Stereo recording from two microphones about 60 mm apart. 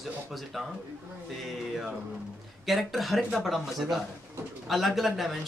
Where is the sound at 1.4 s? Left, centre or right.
Centre.